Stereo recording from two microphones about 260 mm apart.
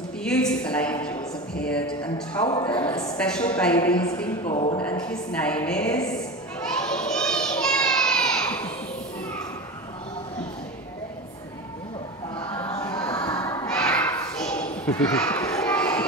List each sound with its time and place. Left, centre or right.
0.2 s a sound: centre
1.7 s a woman's voice: centre
2.4 s a woman's voice: centre
3.2 s a woman's voice: centre
4.5 s speech: left
5.0 s a woman's voice: centre
6.8 s children playing: centre
12.4 s music: centre
13.3 s crowd: centre
13.7 s a sound: centre